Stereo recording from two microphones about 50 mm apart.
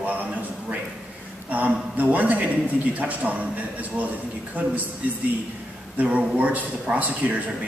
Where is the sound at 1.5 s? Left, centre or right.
Right.